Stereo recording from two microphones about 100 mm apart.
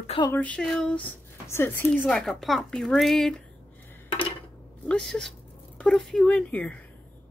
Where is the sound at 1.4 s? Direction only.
25° left (ahead or behind).